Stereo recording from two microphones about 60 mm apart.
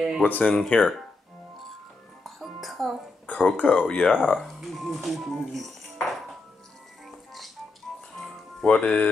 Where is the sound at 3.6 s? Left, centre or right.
Left.